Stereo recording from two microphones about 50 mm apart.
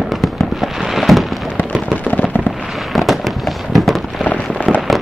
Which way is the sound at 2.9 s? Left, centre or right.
Centre.